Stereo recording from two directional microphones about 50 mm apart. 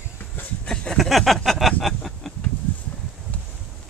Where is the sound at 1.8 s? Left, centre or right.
Centre.